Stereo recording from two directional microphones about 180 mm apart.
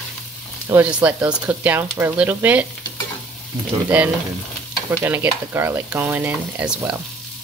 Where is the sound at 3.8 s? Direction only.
10° right (ahead or behind).